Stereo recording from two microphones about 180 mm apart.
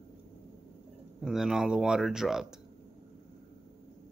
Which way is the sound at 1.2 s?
Centre (ahead or behind).